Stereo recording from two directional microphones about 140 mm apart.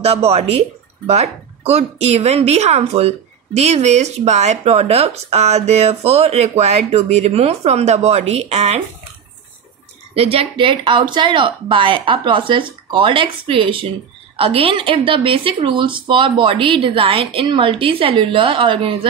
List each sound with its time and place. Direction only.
0.0 s speech: 45° right (ahead or behind)
10.1 s speech: 45° right (ahead or behind)